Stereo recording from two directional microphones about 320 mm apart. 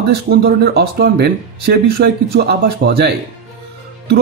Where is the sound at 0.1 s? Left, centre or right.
Right.